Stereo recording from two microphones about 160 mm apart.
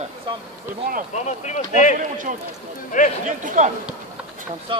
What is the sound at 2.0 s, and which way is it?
Speech, 55° right (ahead or behind).